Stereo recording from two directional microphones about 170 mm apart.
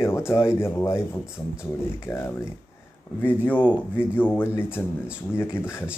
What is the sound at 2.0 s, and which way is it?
A man's voice, 15° left (ahead or behind).